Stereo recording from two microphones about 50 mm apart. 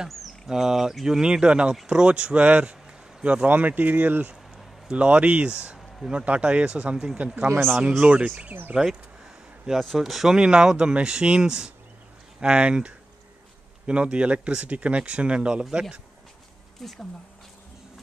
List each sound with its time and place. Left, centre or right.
0.2 s a sound: centre
1.0 s speech: centre
3.4 s speech: right
7.4 s speech: right
8.0 s speech: right
9.8 s speech: centre
10.3 s speech: centre
16.8 s speech: centre